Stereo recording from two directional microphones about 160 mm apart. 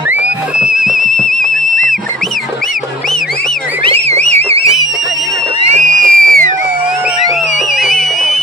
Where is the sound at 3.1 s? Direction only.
Centre (ahead or behind).